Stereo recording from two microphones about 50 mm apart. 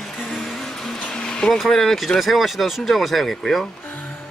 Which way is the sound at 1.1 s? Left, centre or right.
Centre.